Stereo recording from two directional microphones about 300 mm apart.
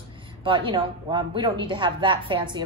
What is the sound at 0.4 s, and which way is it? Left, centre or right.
Speech, centre.